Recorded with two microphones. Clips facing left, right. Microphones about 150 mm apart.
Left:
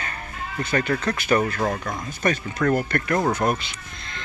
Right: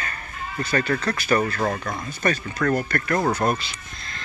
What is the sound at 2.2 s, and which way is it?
Speech, 15° left (ahead or behind).